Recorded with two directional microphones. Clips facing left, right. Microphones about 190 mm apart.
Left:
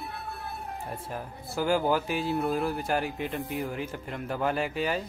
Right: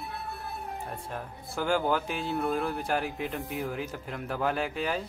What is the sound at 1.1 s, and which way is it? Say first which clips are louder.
A child's voice: left 1 dB; 5° left (ahead or behind).